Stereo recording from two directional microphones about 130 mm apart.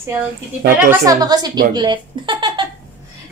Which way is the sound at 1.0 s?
30° right (ahead or behind).